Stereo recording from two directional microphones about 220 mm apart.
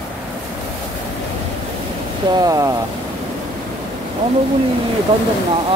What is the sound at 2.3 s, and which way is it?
Speech, 15° right (ahead or behind).